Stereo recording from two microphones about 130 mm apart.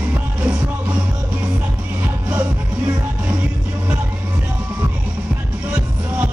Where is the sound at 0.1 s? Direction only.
10° right (ahead or behind).